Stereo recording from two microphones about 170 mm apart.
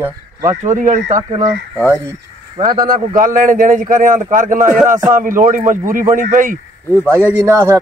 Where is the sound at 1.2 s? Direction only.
20° right (ahead or behind).